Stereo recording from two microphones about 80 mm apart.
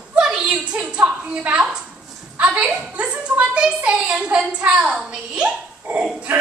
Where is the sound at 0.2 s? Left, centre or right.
Centre.